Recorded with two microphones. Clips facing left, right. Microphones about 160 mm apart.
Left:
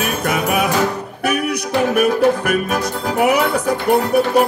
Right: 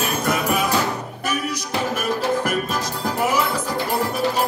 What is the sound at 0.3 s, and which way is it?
Music, 65° left (ahead or behind).